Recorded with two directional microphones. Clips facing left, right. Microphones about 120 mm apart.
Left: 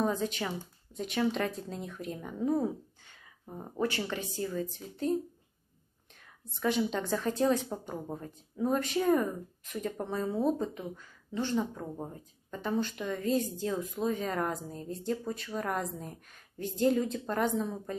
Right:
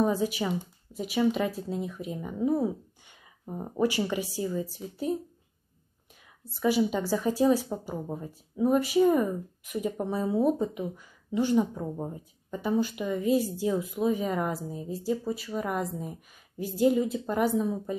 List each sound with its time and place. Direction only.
0.0 s speech: 10° right (ahead or behind)
6.5 s speech: 5° right (ahead or behind)